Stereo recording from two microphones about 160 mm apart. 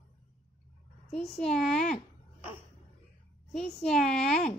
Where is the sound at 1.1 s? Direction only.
5° left (ahead or behind).